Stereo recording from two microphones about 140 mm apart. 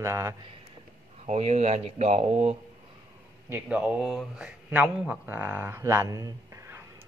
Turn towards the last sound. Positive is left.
turn(degrees=-20)  # may be behind; listen again after turning